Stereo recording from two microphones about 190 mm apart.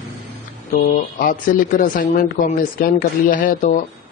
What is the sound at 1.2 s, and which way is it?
Speech, 45° left (ahead or behind).